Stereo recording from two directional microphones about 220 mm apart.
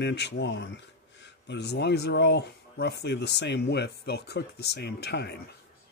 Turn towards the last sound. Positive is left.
turn(degrees=50)  # may be behind; listen again after turning